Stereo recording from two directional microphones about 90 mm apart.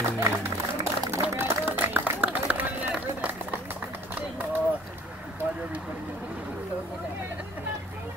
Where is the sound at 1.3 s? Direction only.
20° right (ahead or behind).